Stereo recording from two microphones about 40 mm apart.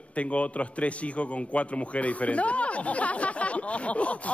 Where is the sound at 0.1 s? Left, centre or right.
Left.